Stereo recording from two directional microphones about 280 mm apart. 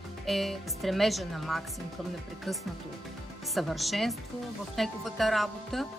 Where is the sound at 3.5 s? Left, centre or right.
Centre.